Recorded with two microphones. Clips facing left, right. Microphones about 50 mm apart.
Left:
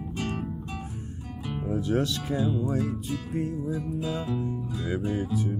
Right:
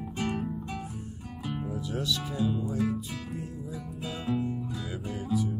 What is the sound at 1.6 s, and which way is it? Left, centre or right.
Music, left.